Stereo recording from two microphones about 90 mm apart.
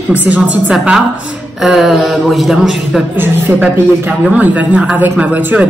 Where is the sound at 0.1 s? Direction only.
15° right (ahead or behind).